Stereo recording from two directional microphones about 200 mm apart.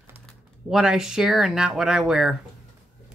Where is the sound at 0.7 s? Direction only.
Centre (ahead or behind).